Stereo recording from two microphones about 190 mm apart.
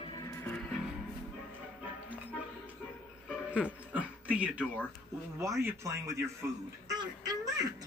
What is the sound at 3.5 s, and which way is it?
Speech, 5° right (ahead or behind).